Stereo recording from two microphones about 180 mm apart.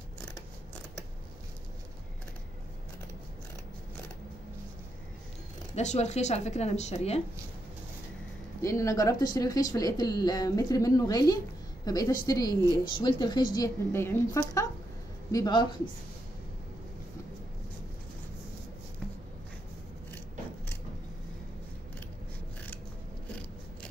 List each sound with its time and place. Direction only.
5.8 s a woman's voice: 40° left (ahead or behind)
8.5 s speech: 15° left (ahead or behind)